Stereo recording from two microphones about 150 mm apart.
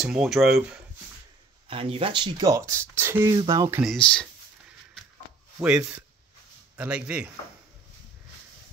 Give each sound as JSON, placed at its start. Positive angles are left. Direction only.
{"t": 0.0, "sound": "speech", "side_deg": 0}
{"t": 1.7, "sound": "speech", "side_deg": -35}
{"t": 2.4, "sound": "speech", "side_deg": -20}
{"t": 3.8, "sound": "speech", "side_deg": 5}
{"t": 5.6, "sound": "speech", "side_deg": -5}